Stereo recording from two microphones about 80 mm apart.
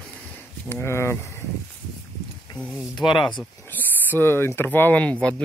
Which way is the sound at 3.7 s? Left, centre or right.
Left.